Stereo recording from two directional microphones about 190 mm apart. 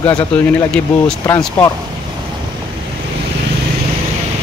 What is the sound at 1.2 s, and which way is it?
Speech, 15° left (ahead or behind).